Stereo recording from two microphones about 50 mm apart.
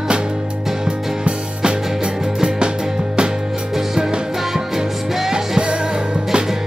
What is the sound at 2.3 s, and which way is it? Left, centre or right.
Music, centre.